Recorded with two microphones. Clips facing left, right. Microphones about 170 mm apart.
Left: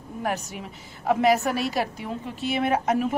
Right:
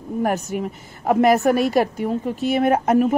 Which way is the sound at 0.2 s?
50° right (ahead or behind).